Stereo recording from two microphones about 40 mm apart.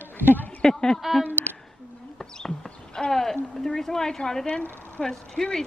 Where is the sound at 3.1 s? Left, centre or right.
Centre.